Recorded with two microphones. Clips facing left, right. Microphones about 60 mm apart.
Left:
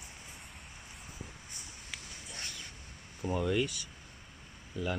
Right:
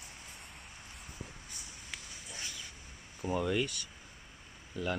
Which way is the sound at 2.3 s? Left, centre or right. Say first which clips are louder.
Even; left.